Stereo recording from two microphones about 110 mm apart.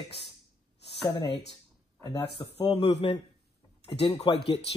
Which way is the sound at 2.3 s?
55° left (ahead or behind).